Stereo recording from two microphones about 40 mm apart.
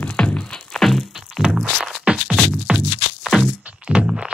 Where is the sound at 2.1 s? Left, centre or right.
Right.